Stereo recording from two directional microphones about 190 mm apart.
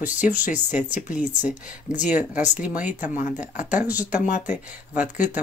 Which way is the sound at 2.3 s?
40° left (ahead or behind).